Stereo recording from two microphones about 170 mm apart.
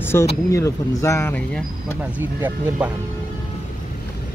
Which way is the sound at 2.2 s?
10° right (ahead or behind).